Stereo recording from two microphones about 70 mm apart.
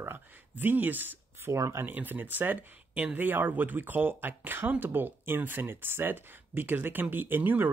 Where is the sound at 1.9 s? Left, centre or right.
Right.